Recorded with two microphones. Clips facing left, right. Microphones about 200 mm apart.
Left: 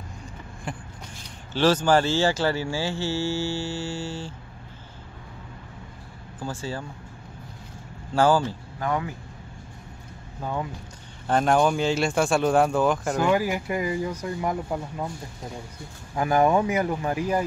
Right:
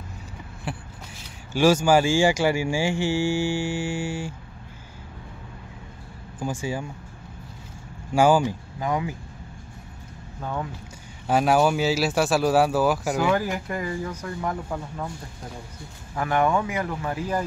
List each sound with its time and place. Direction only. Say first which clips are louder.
0.7 s speech: right 2 dB; 5° right (ahead or behind)
6.4 s speech: right 3 dB; 15° right (ahead or behind)
8.1 s speech: right 2 dB; 15° right (ahead or behind)
10.4 s speech: left 1 dB; 5° left (ahead or behind)
11.2 s speech: right 1 dB; 5° right (ahead or behind); by 15.0 s 15° left (ahead or behind)
16.2 s speech: left 2 dB; 30° left (ahead or behind)